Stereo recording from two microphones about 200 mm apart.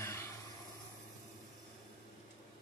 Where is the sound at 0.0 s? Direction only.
15° left (ahead or behind).